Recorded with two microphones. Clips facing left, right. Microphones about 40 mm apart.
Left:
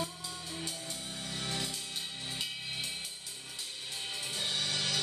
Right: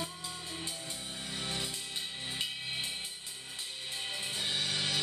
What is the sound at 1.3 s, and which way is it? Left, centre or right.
Music, centre.